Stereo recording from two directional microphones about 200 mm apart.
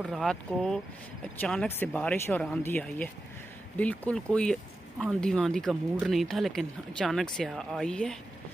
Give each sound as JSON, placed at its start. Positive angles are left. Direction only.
{"t": 0.0, "sound": "speech", "side_deg": 0}